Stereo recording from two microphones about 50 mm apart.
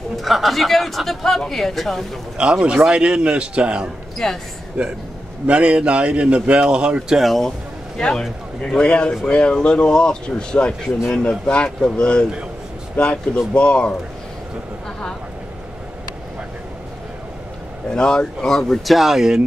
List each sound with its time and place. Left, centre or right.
0.2 s a man's voice: centre
2.3 s a man's voice: centre
4.2 s speech: centre
5.5 s a man's voice: right
7.2 s a man's voice: centre
8.2 s a man's voice: centre
17.9 s speech: centre
18.9 s speech: centre